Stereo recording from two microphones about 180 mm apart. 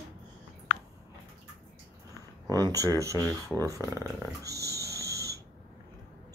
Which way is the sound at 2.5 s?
20° right (ahead or behind).